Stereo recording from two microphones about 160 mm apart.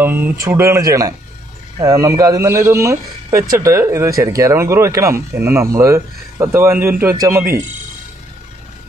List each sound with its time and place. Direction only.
0.0 s speech: 15° right (ahead or behind)